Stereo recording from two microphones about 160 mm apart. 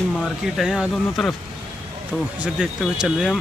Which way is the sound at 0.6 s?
5° right (ahead or behind).